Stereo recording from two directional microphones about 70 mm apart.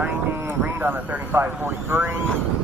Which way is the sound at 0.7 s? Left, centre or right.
Right.